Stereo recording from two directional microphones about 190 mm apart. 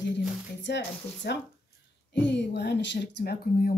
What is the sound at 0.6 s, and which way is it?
Speech, 65° left (ahead or behind).